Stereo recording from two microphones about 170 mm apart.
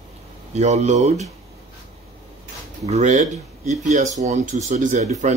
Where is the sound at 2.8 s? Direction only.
45° right (ahead or behind).